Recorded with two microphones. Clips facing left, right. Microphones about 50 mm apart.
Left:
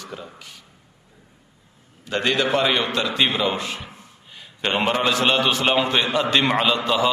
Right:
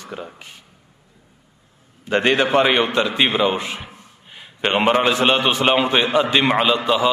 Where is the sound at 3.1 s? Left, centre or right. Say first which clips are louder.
Right 3 dB; right.